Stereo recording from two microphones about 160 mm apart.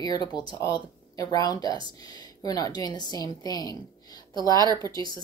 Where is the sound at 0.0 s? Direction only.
25° left (ahead or behind).